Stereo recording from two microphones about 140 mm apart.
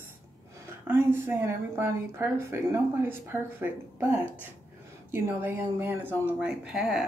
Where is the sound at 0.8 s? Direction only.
15° right (ahead or behind).